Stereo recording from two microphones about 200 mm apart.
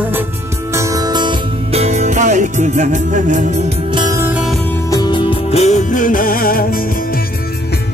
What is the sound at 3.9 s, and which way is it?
Music, 20° right (ahead or behind).